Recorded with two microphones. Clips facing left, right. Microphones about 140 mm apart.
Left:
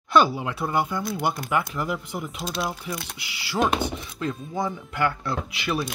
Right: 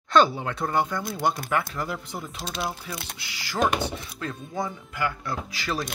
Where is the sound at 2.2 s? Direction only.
25° right (ahead or behind).